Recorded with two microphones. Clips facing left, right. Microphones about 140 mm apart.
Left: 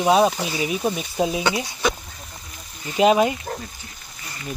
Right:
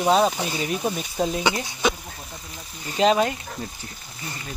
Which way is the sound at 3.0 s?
10° left (ahead or behind).